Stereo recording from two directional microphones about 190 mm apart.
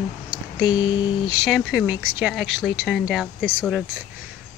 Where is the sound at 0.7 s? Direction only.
25° left (ahead or behind).